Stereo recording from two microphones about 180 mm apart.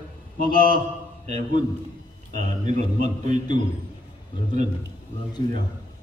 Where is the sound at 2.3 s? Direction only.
45° right (ahead or behind).